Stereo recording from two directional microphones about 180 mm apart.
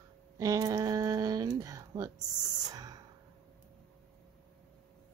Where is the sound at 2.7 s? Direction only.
20° right (ahead or behind).